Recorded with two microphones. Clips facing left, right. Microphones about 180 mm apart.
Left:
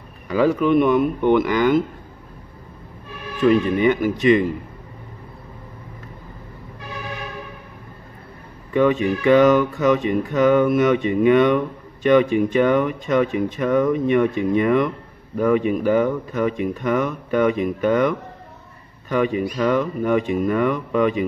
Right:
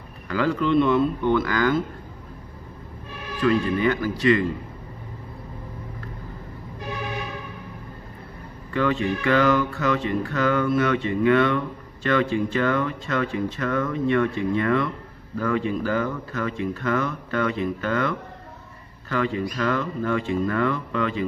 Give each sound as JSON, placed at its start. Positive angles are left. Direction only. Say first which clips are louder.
{"t": 0.3, "sound": "speech", "louder": "left 5 dB", "side_deg": 15}
{"t": 3.3, "sound": "music", "louder": "left 5 dB", "side_deg": 20}
{"t": 8.7, "sound": "music", "louder": "left 5 dB", "side_deg": 20}
{"t": 19.0, "sound": "speech", "louder": "left 5 dB", "side_deg": 15}